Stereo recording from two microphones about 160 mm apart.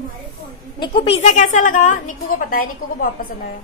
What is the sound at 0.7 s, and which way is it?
A woman's voice, 35° left (ahead or behind).